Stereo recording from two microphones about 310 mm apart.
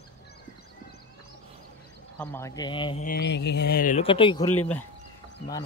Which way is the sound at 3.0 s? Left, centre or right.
Left.